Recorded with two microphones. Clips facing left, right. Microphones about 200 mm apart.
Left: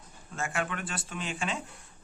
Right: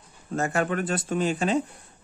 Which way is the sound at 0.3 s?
40° right (ahead or behind).